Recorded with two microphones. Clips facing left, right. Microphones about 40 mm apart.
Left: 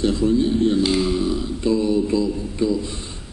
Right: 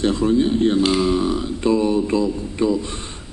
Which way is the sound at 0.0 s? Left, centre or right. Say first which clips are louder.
Right 1 dB; right.